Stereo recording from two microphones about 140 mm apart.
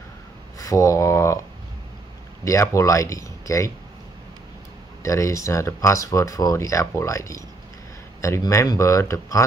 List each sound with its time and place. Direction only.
0.6 s speech: 25° left (ahead or behind)
2.4 s speech: 20° left (ahead or behind)
5.0 s speech: 20° left (ahead or behind)